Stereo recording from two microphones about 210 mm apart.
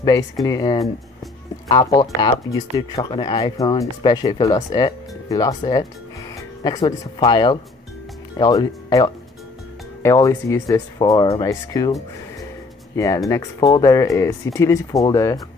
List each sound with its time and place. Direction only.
0.0 s speech: 15° left (ahead or behind)
6.6 s speech: 20° left (ahead or behind)
12.9 s speech: 15° left (ahead or behind)